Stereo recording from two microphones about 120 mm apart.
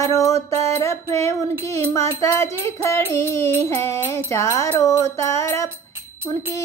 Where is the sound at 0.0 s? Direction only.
25° left (ahead or behind).